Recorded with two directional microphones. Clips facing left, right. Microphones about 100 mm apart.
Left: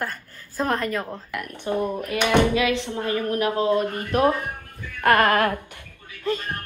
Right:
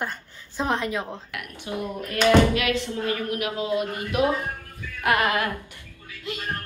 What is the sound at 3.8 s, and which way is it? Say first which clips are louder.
Speech: left 3 dB; 15° right (ahead or behind).